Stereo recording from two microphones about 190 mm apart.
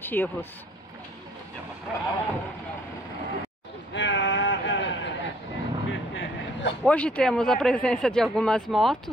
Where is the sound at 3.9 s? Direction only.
70° left (ahead or behind).